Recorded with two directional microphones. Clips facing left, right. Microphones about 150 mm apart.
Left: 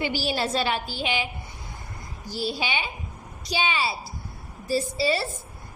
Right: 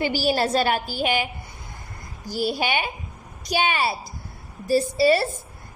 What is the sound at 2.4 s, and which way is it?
A woman's voice, 55° right (ahead or behind).